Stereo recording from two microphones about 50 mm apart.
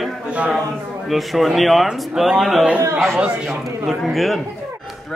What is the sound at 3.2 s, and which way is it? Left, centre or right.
Speech, centre.